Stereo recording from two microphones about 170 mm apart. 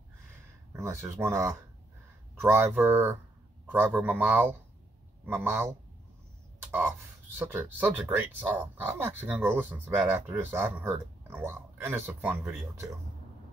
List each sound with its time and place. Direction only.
0.7 s speech: 15° right (ahead or behind)